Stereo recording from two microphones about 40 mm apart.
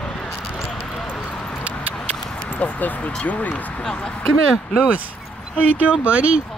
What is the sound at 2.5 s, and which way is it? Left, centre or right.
Speech, left.